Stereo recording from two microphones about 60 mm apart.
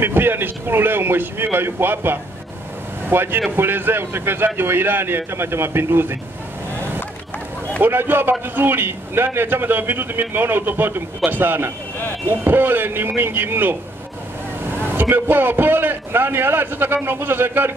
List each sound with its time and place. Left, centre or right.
0.0 s a man's voice: right
7.8 s a man's voice: right
15.0 s a man's voice: right